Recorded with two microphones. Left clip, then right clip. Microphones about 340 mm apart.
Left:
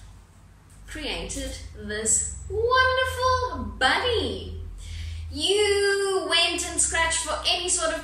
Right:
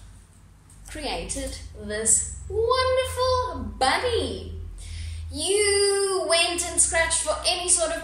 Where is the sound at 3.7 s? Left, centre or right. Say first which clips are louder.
Even; centre.